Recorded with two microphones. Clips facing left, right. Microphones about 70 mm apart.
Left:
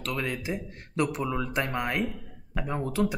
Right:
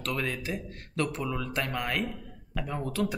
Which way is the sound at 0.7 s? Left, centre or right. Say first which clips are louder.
Left 4 dB; centre.